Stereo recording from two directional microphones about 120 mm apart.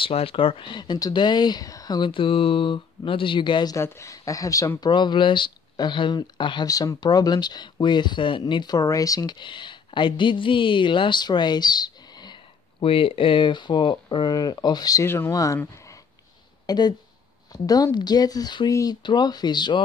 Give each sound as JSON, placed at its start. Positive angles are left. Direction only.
{"t": 0.0, "sound": "speech", "side_deg": 50}
{"t": 3.7, "sound": "speech", "side_deg": 25}
{"t": 12.8, "sound": "speech", "side_deg": 50}
{"t": 16.6, "sound": "speech", "side_deg": 35}